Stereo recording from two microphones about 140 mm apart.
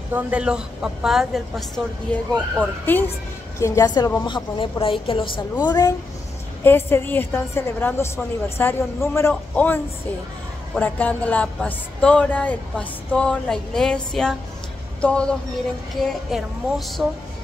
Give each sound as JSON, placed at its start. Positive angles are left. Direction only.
{"t": 0.1, "sound": "speech", "side_deg": -10}
{"t": 2.1, "sound": "a woman's voice", "side_deg": 10}
{"t": 5.7, "sound": "speech", "side_deg": 25}
{"t": 6.6, "sound": "a woman's voice", "side_deg": 15}
{"t": 10.8, "sound": "a woman's voice", "side_deg": 10}
{"t": 16.0, "sound": "music", "side_deg": 0}